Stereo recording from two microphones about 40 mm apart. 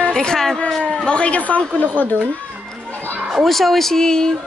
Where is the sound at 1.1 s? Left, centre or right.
Left.